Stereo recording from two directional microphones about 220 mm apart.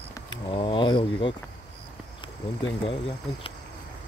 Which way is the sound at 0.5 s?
20° left (ahead or behind).